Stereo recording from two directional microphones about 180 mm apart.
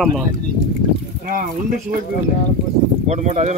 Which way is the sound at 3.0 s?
40° right (ahead or behind).